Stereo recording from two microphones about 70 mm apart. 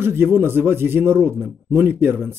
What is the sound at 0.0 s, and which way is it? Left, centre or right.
Speech, right.